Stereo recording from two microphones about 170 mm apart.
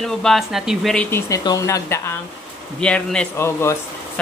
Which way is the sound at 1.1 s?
20° left (ahead or behind).